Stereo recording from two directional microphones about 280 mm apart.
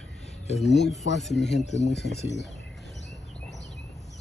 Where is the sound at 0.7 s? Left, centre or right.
Left.